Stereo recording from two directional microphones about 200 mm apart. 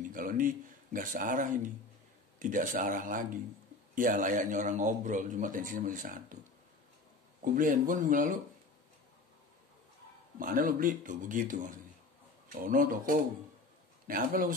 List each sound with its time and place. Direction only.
0.1 s a man's voice: 45° right (ahead or behind)
7.4 s a man's voice: 40° right (ahead or behind)
10.4 s a man's voice: 45° right (ahead or behind)